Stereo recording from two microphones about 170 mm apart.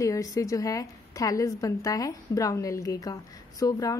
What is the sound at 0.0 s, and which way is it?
A woman's voice, 20° left (ahead or behind).